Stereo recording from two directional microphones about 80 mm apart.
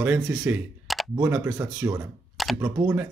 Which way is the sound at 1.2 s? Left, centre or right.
Right.